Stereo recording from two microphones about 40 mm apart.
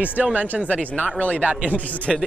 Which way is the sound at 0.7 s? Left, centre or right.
Left.